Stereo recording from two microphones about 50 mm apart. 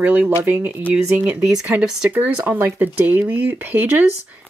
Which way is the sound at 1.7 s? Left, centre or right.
Right.